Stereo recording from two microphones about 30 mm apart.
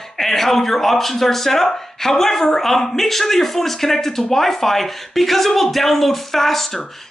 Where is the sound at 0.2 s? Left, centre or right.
Centre.